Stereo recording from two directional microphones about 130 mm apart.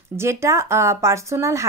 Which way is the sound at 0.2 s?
20° right (ahead or behind).